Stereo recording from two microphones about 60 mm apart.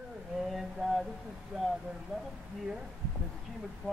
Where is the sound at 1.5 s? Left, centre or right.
Centre.